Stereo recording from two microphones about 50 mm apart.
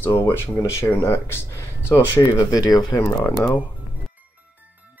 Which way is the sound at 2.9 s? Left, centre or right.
Left.